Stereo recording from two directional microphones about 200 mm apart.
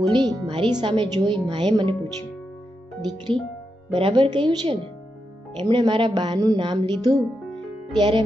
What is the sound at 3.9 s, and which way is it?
Speech, 25° right (ahead or behind).